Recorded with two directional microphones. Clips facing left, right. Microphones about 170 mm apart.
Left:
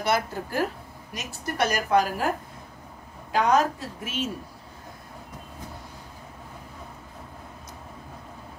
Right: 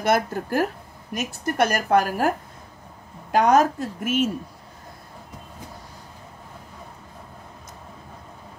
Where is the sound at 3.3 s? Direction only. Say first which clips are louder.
Right 4 dB; 50° right (ahead or behind).